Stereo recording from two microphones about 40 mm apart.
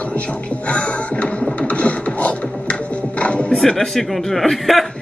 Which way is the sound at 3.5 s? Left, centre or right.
Centre.